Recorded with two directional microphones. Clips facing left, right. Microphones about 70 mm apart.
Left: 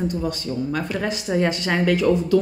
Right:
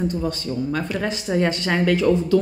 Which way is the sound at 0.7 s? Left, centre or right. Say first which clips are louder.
Even; centre.